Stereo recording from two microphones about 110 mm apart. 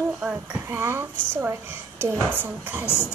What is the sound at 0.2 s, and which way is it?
A woman's voice, 15° right (ahead or behind).